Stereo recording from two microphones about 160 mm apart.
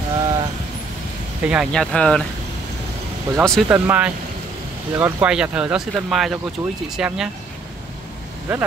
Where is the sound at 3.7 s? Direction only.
10° right (ahead or behind).